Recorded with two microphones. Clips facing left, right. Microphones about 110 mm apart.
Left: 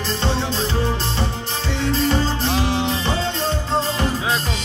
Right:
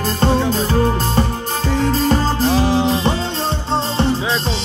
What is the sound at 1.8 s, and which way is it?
Music, 40° right (ahead or behind).